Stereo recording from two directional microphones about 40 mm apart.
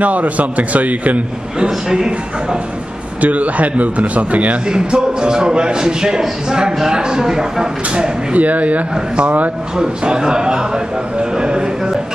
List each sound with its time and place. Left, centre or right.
0.0 s speech: right
1.9 s speech: centre
3.2 s speech: right
4.6 s a man's voice: centre
8.3 s speech: right
8.9 s a man's voice: right
11.3 s a sound: centre